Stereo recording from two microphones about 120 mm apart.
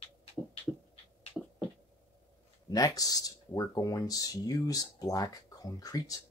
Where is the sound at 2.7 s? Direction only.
30° left (ahead or behind).